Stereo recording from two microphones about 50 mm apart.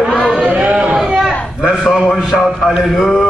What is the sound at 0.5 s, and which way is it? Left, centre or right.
Music, right.